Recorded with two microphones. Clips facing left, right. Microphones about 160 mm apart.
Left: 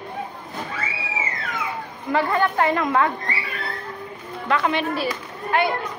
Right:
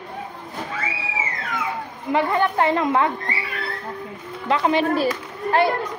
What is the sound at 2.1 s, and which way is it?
A woman's voice, 20° right (ahead or behind).